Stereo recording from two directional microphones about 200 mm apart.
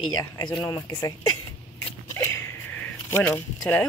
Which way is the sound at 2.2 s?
10° left (ahead or behind).